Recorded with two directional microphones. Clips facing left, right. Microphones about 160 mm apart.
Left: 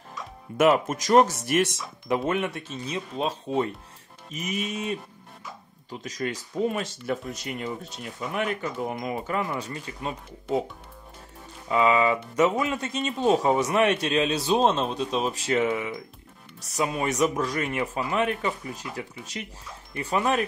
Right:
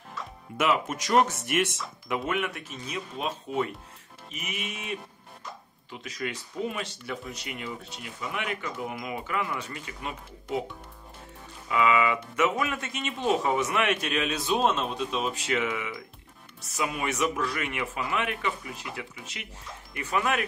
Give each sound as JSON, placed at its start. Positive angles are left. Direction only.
{"t": 0.6, "sound": "speech", "side_deg": 40}
{"t": 11.7, "sound": "speech", "side_deg": 30}